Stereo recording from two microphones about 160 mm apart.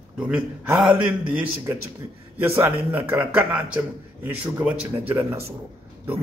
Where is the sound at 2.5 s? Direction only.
15° right (ahead or behind).